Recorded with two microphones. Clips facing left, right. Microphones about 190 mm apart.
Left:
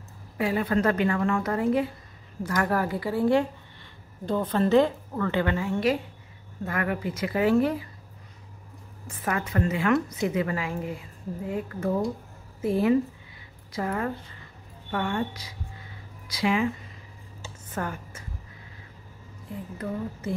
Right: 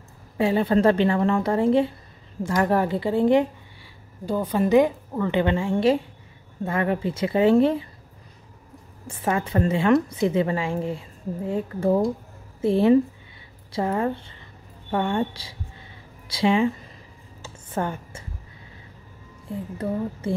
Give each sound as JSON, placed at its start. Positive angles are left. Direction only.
{"t": 0.4, "sound": "a woman's voice", "side_deg": -25}
{"t": 4.3, "sound": "a woman's voice", "side_deg": -10}
{"t": 9.0, "sound": "a woman's voice", "side_deg": -25}
{"t": 19.8, "sound": "a woman's voice", "side_deg": -30}